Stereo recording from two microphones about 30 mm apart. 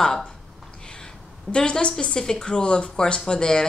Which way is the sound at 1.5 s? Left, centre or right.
Left.